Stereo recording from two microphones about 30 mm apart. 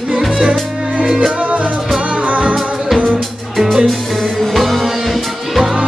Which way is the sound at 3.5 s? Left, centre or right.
Centre.